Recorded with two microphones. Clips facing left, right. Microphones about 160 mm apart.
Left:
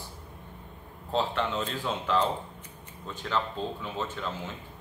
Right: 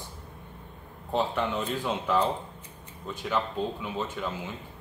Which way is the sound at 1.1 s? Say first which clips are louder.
Right 1 dB; 15° right (ahead or behind).